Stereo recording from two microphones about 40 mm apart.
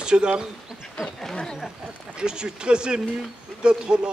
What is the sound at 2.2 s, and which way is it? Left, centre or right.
Speech, right.